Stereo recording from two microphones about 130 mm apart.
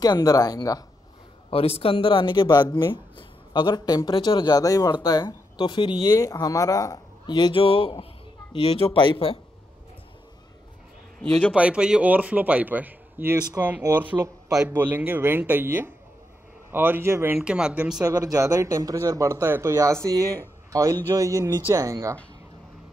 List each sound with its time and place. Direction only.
0.0 s speech: 30° left (ahead or behind)
1.5 s speech: 50° left (ahead or behind)
11.1 s a man's voice: 5° left (ahead or behind)
11.5 s a man's voice: 10° right (ahead or behind)
17.4 s speech: 5° right (ahead or behind)
18.0 s speech: 25° right (ahead or behind)